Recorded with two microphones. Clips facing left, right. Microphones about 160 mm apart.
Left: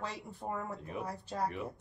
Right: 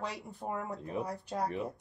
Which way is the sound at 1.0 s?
Centre (ahead or behind).